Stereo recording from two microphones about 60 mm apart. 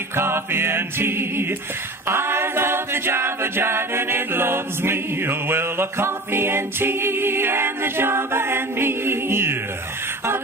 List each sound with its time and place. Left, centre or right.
0.1 s a capella: right